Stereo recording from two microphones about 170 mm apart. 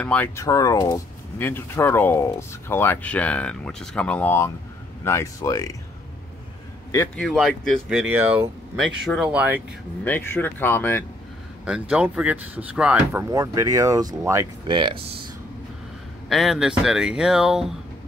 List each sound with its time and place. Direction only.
0.0 s speech: 5° left (ahead or behind)
0.4 s speech: 20° left (ahead or behind)
7.2 s speech: centre (ahead or behind)
8.0 s speech: 10° right (ahead or behind)
8.7 s speech: centre (ahead or behind)
10.0 s speech: 10° left (ahead or behind)
11.9 s speech: 5° right (ahead or behind)
13.3 s speech: 20° right (ahead or behind)
16.3 s speech: centre (ahead or behind)